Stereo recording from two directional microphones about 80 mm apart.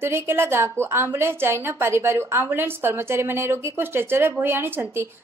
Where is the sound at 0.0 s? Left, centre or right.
Right.